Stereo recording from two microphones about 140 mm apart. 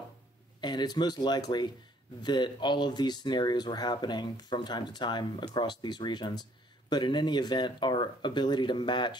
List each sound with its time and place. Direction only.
0.6 s speech: 30° left (ahead or behind)